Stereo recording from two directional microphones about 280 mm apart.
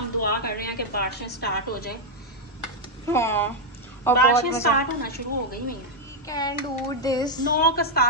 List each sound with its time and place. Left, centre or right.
0.2 s a woman's voice: left
3.1 s speech: centre
5.0 s a woman's voice: left
6.2 s speech: centre
7.5 s a woman's voice: left